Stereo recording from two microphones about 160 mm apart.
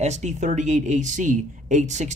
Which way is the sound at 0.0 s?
45° right (ahead or behind).